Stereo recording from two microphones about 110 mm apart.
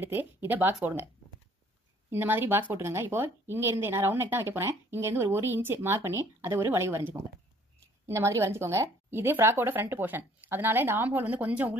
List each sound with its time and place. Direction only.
0.0 s speech: 20° right (ahead or behind)
2.0 s speech: 20° right (ahead or behind)